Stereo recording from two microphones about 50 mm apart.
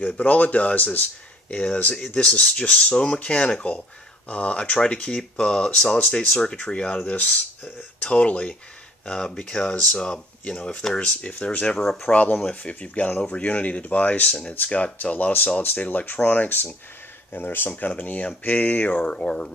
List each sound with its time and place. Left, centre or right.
0.0 s speech: left
17.3 s speech: left; by 19.5 s centre